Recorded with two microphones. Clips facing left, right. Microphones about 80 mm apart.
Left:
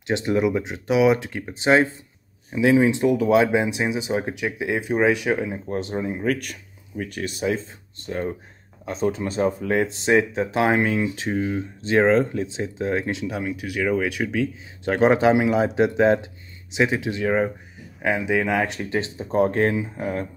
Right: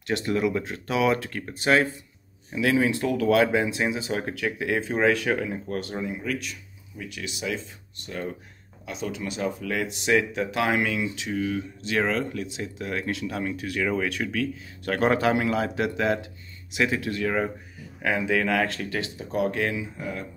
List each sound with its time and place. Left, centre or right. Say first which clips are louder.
0.0 s speech: left 4 dB; left
6.1 s speech: left 6 dB; left
13.4 s speech: left 2 dB; centre; by 20.2 s left